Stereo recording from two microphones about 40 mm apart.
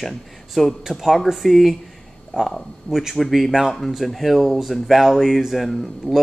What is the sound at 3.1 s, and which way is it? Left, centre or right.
A man's voice, centre.